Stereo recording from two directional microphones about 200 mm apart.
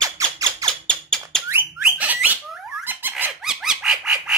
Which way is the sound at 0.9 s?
5° left (ahead or behind).